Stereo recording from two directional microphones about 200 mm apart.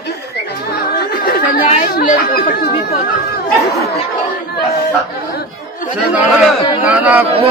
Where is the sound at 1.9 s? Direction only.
45° left (ahead or behind).